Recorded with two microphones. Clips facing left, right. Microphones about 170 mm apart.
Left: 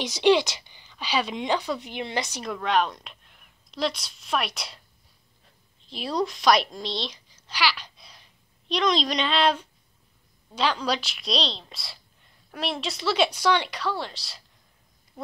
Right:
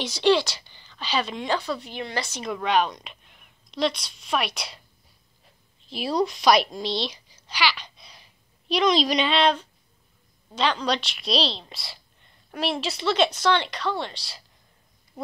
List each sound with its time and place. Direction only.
0.0 s a woman's voice: 15° left (ahead or behind)
2.4 s a woman's voice: centre (ahead or behind)
5.9 s a woman's voice: 5° right (ahead or behind)